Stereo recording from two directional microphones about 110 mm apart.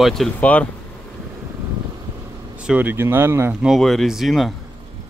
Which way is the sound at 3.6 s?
Centre (ahead or behind).